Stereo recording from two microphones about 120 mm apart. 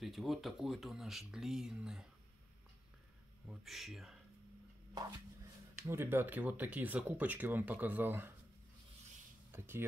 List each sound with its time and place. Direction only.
0.0 s speech: centre (ahead or behind)
3.4 s speech: centre (ahead or behind)
4.9 s speech: 25° right (ahead or behind)
9.5 s speech: 20° right (ahead or behind)